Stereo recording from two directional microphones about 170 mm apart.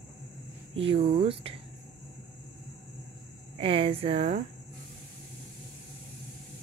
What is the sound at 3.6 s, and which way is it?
Speech, 35° right (ahead or behind).